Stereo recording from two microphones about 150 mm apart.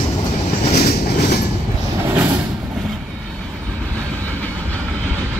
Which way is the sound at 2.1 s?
20° right (ahead or behind).